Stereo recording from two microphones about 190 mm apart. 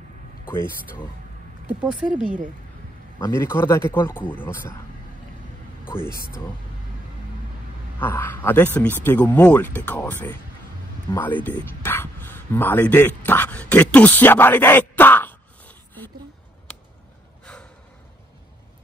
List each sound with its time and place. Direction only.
0.5 s speech: 10° left (ahead or behind)
1.7 s speech: 5° right (ahead or behind)
2.0 s speech: 45° right (ahead or behind)
3.2 s speech: 15° left (ahead or behind)
5.9 s speech: 10° left (ahead or behind)
8.0 s speech: 10° left (ahead or behind)